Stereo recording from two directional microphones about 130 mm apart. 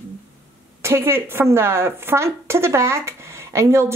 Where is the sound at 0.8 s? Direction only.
20° right (ahead or behind).